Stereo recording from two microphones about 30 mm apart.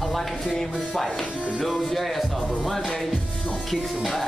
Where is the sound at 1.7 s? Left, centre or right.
Centre.